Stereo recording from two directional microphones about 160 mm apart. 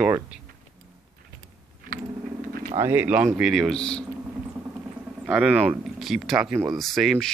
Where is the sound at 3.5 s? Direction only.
Centre (ahead or behind).